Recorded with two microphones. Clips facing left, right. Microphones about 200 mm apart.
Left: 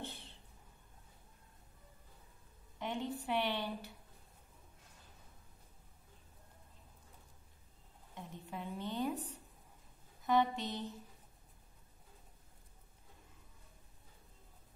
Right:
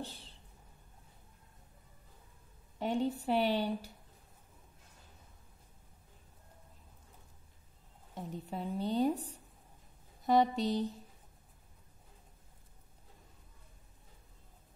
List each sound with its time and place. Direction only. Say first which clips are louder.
0.1 s a sound: left 1 dB; centre (ahead or behind)
2.8 s a woman's voice: right 7 dB; 35° right (ahead or behind)
8.1 s a woman's voice: right 6 dB; 35° right (ahead or behind)